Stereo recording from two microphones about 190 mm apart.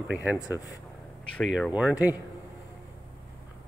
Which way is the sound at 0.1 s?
10° right (ahead or behind).